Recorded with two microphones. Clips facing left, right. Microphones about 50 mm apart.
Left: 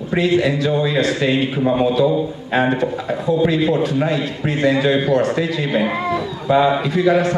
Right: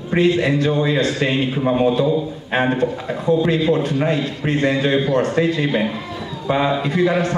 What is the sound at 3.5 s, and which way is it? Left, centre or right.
A man's voice, right.